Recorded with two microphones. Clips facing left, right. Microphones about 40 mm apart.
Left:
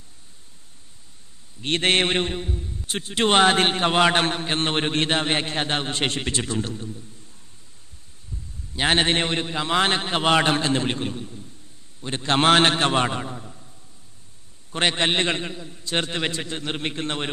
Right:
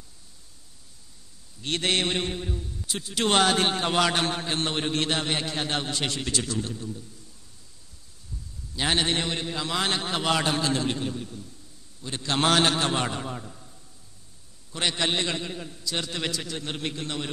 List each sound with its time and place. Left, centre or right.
1.6 s a man's voice: left
8.3 s heart sounds: left
8.7 s a man's voice: left
14.7 s a man's voice: left